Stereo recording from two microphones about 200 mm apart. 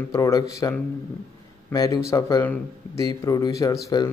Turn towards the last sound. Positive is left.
turn(degrees=20)  # may be behind; listen again after turning